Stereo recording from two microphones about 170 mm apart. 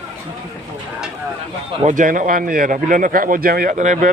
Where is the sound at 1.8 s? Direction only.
50° right (ahead or behind).